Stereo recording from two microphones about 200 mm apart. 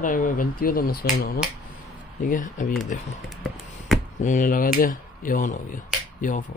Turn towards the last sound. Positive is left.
turn(degrees=40)  # may be behind; listen again after turning